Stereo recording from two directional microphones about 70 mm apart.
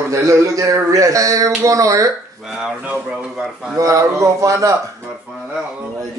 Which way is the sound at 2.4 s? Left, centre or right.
Centre.